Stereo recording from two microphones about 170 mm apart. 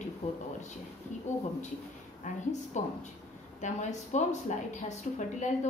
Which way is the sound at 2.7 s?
45° left (ahead or behind).